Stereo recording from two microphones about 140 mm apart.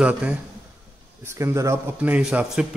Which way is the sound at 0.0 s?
10° right (ahead or behind).